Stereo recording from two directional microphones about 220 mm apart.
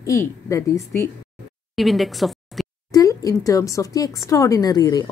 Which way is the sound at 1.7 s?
Centre (ahead or behind).